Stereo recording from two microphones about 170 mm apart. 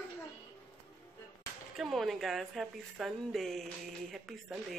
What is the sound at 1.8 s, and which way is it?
A woman's voice, centre (ahead or behind).